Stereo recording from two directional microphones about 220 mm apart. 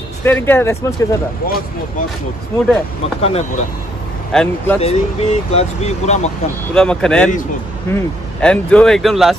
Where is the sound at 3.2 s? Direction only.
30° left (ahead or behind).